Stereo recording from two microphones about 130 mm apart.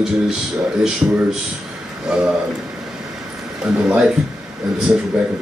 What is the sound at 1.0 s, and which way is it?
Speech, 20° right (ahead or behind).